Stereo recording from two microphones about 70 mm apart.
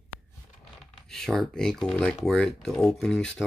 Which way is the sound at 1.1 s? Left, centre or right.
Centre.